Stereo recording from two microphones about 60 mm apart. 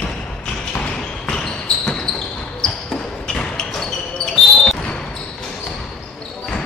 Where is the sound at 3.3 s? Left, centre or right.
Centre.